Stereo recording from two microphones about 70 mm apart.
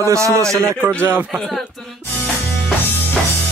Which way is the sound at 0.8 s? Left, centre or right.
Right.